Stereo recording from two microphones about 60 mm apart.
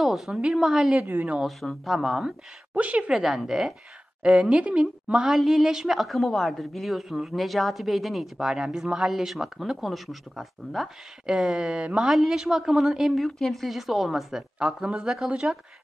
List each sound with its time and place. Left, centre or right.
0.0 s a woman's voice: centre
1.0 s speech: right
1.4 s a woman's voice: centre
2.7 s a woman's voice: right
3.1 s a woman's voice: centre
4.2 s a woman's voice: centre
11.2 s a woman's voice: centre
14.6 s a woman's voice: centre